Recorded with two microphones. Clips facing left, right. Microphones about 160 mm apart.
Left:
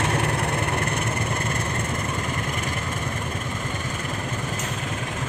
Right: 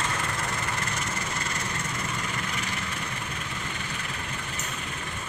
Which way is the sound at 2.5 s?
50° left (ahead or behind).